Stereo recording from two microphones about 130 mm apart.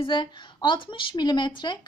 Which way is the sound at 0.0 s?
35° left (ahead or behind).